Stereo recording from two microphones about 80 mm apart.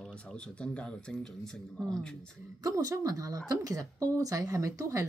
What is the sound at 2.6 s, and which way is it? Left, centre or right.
Speech, right.